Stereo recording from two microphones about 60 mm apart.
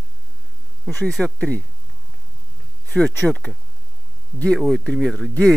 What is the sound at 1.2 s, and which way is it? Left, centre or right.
Speech, centre.